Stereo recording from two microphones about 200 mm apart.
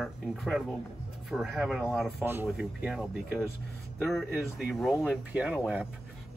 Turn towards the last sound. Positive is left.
turn(degrees=-5)  # may be behind; listen again after turning